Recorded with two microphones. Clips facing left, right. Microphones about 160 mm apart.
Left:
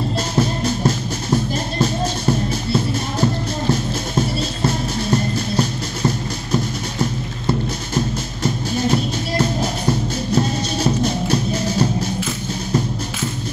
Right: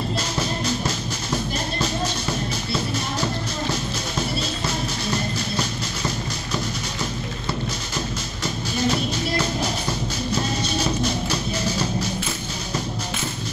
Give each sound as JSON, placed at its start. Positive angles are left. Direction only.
{"t": 0.4, "sound": "music", "side_deg": 50}
{"t": 4.6, "sound": "music", "side_deg": 50}